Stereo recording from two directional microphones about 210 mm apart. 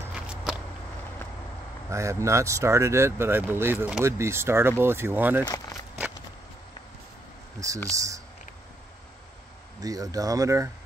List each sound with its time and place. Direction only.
0.1 s a sound: 5° right (ahead or behind)
1.9 s speech: 15° right (ahead or behind)
7.9 s speech: 15° right (ahead or behind)
9.8 s speech: 15° right (ahead or behind)